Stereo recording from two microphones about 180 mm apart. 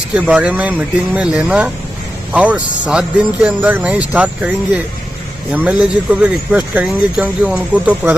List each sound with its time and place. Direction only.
0.3 s speech: 5° right (ahead or behind)